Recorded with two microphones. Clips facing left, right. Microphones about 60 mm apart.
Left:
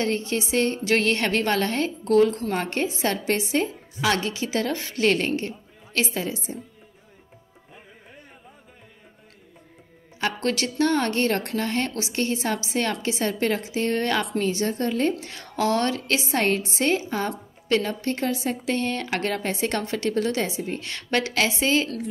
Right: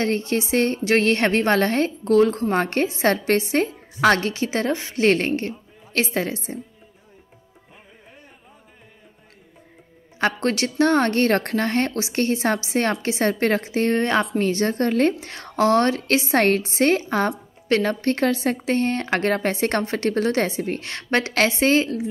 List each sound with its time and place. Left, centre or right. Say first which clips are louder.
0.0 s a woman's voice: right 3 dB; right
10.1 s a woman's voice: right 4 dB; right
14.4 s a woman's voice: right 4 dB; right
21.8 s a woman's voice: right 4 dB; right